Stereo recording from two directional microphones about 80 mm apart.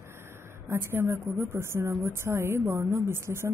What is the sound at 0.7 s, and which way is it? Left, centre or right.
A woman's voice, right.